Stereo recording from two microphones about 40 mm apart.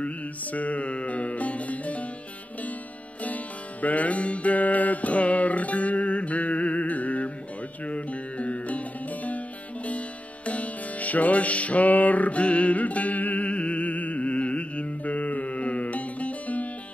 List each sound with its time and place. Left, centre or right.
0.0 s music: left
3.3 s music: left